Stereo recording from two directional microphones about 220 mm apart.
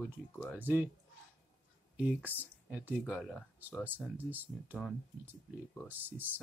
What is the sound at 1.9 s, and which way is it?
Speech, 5° right (ahead or behind).